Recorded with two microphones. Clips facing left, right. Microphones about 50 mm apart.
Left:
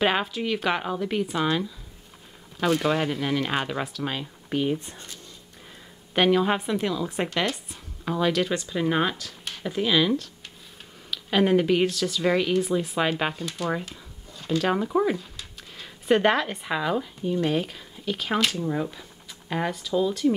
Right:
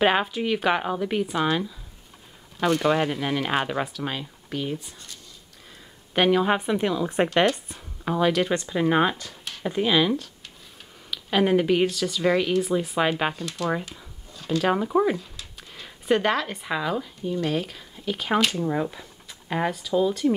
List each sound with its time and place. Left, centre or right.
0.0 s speech: centre
4.5 s speech: centre
4.7 s speech: left
6.1 s speech: centre
9.4 s a sound: centre
9.7 s speech: centre
13.7 s a sound: centre
14.6 s speech: centre
15.7 s a sound: centre
16.2 s speech: centre